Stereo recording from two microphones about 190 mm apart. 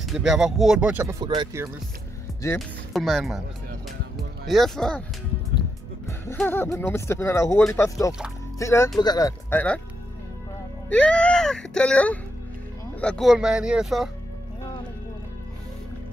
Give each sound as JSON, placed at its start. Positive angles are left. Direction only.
{"t": 0.0, "sound": "speech", "side_deg": 0}
{"t": 1.2, "sound": "speech", "side_deg": -25}
{"t": 2.9, "sound": "speech", "side_deg": 0}
{"t": 4.5, "sound": "speech", "side_deg": 0}
{"t": 6.0, "sound": "speech", "side_deg": 15}
{"t": 10.9, "sound": "speech", "side_deg": 5}